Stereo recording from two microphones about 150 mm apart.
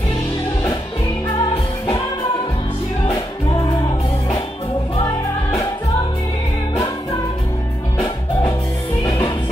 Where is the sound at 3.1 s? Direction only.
25° left (ahead or behind).